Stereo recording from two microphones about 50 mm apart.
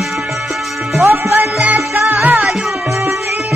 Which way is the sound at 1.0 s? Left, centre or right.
Right.